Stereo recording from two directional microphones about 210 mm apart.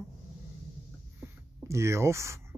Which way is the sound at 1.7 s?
15° right (ahead or behind).